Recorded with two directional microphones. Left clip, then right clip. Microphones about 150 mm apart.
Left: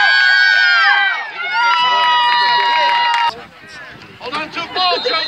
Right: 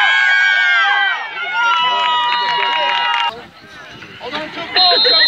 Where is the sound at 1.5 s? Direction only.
10° left (ahead or behind).